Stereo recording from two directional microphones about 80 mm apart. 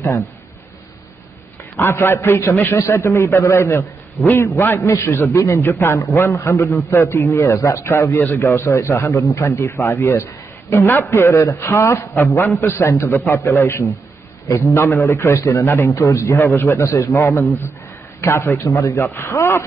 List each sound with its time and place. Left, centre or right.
0.0 s a man's voice: left
1.8 s a man's voice: left
4.2 s a man's voice: left